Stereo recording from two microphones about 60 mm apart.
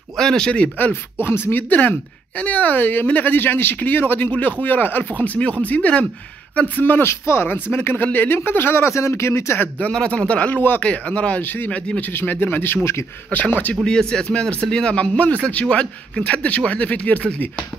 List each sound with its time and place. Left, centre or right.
0.2 s a man's voice: centre
1.2 s speech: left
1.6 s speech: left
6.8 s speech: left
9.8 s speech: centre
10.8 s speech: left
11.4 s speech: left
13.8 s a man's voice: centre